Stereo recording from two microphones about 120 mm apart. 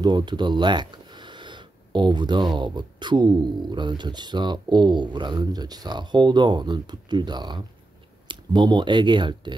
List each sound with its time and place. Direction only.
0.0 s speech: 40° right (ahead or behind)